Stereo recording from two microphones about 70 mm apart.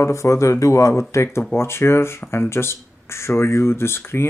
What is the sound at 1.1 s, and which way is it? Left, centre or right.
Speech, left.